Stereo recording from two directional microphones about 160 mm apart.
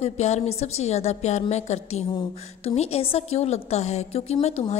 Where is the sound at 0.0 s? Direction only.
40° left (ahead or behind).